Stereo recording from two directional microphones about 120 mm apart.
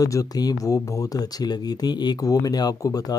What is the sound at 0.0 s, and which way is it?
Speech, 30° left (ahead or behind).